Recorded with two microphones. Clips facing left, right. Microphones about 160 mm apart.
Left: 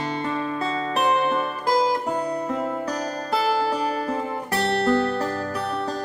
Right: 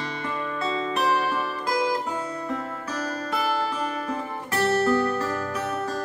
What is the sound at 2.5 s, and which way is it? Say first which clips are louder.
Music: left 5 dB; 20° left (ahead or behind).